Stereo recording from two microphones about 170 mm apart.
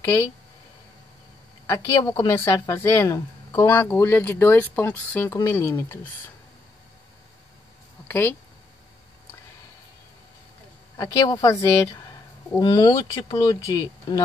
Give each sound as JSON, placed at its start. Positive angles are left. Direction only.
{"t": 1.7, "sound": "speech", "side_deg": 20}
{"t": 11.0, "sound": "speech", "side_deg": 20}